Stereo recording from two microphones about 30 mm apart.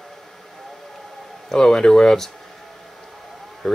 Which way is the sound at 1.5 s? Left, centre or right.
Left.